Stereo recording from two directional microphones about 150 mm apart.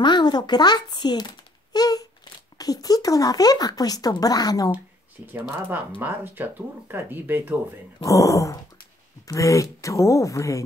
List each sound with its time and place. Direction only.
0.0 s speech: 30° left (ahead or behind)
5.2 s speech: 15° right (ahead or behind)
8.0 s speech: 20° left (ahead or behind)